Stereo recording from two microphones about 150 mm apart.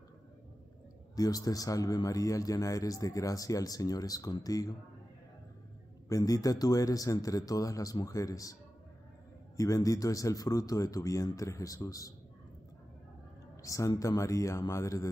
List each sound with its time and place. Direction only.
1.1 s speech: 25° left (ahead or behind)
6.0 s speech: 20° left (ahead or behind)
9.6 s speech: 20° left (ahead or behind)
13.6 s speech: 20° left (ahead or behind)